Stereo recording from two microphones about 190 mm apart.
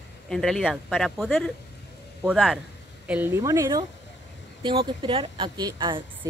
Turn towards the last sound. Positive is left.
turn(degrees=-25)  # may be behind; listen again after turning